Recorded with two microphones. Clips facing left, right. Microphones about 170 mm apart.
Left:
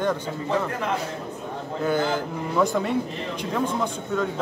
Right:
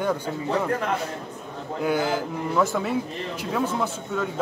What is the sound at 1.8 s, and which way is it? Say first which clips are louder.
Speech: even; 10° right (ahead or behind).